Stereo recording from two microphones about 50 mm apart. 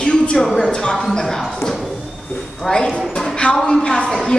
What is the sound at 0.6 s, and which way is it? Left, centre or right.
Speech, centre.